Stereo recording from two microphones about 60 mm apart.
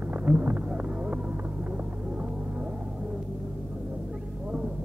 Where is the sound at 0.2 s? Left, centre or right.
Right.